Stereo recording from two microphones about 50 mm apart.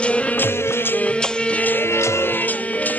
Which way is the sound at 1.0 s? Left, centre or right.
Left.